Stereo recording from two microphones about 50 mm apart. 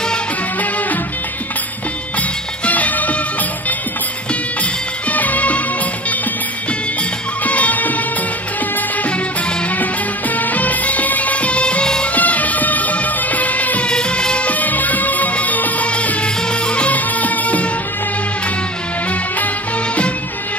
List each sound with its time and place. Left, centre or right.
2.6 s music: left
5.1 s music: left
7.4 s music: left
10.3 s music: left
12.1 s music: left
13.8 s music: centre